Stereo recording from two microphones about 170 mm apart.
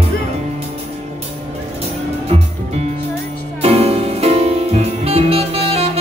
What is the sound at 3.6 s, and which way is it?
Music, 35° right (ahead or behind).